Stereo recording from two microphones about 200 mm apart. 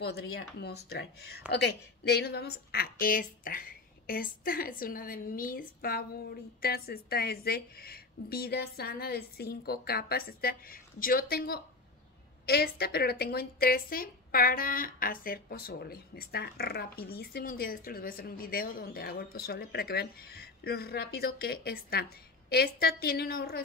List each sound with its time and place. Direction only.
0.0 s a woman's voice: 55° left (ahead or behind)